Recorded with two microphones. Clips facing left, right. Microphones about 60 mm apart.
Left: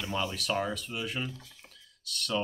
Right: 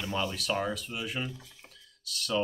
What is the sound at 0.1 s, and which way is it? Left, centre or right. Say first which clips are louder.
Speech: even; centre.